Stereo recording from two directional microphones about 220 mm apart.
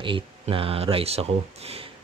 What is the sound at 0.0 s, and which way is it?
Speech, 25° right (ahead or behind).